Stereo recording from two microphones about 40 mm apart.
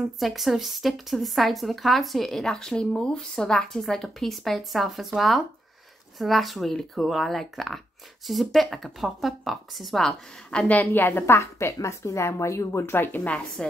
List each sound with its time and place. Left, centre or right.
0.2 s a woman's voice: centre
10.7 s a woman's voice: left
11.0 s a woman's voice: left
13.6 s a woman's voice: left